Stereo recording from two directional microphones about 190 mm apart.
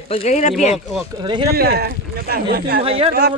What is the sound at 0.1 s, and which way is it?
Speech, 35° left (ahead or behind).